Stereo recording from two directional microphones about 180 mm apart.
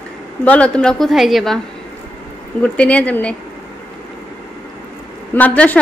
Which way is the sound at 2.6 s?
5° left (ahead or behind).